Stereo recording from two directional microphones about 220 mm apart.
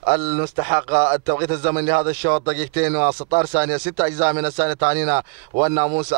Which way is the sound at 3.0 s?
30° right (ahead or behind).